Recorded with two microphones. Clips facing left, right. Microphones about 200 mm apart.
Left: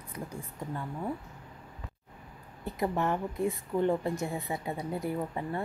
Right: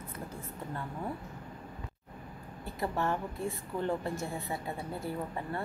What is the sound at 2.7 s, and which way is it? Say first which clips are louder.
A woman's voice: left 3 dB; 15° left (ahead or behind).